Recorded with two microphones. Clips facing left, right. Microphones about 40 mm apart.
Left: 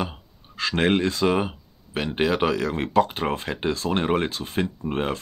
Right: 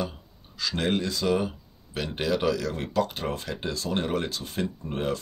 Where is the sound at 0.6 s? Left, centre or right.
Left.